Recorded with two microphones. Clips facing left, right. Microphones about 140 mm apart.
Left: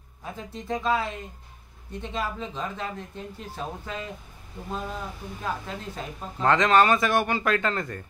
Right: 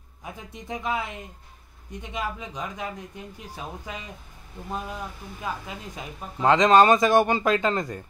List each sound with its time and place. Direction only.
0.2 s speech: 15° right (ahead or behind)
5.4 s speech: 10° right (ahead or behind)